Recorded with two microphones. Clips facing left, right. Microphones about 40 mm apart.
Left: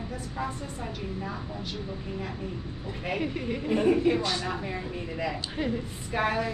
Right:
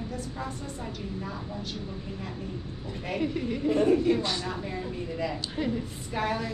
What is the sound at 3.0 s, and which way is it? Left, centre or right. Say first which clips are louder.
A woman's voice: right 1 dB; centre.